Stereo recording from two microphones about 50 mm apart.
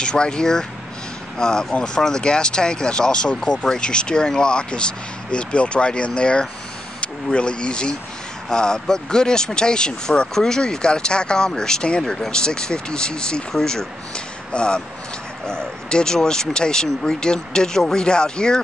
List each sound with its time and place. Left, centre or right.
0.0 s speech: centre